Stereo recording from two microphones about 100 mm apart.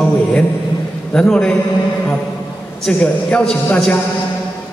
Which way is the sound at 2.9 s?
10° left (ahead or behind).